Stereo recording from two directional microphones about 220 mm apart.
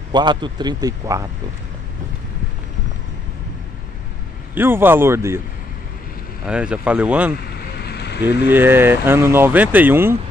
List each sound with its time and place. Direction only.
0.1 s a man's voice: 20° right (ahead or behind)
4.6 s speech: 10° right (ahead or behind)
6.4 s speech: 5° right (ahead or behind)
7.4 s vehicle: 45° left (ahead or behind)
8.5 s speech: 10° right (ahead or behind)